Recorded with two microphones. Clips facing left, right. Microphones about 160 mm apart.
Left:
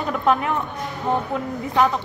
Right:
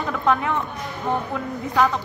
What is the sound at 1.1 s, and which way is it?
Speech, 20° left (ahead or behind).